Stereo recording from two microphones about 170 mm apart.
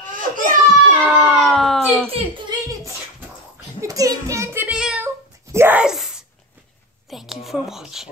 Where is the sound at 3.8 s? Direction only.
20° right (ahead or behind).